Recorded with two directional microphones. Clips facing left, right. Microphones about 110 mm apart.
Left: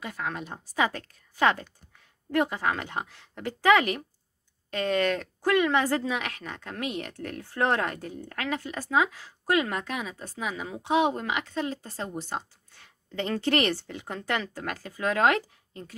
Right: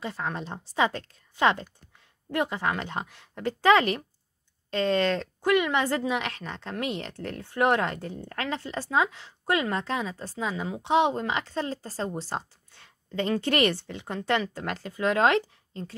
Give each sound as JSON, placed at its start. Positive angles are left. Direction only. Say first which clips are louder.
{"t": 0.0, "sound": "speech", "louder": "right 1 dB", "side_deg": -30}